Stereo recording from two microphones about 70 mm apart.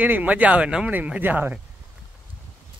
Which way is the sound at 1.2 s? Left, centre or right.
Right.